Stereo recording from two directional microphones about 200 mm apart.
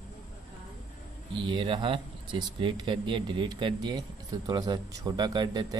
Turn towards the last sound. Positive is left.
turn(degrees=-20)  # may be behind; listen again after turning